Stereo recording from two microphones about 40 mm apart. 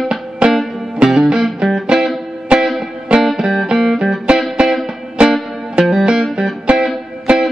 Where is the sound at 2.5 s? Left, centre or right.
Right.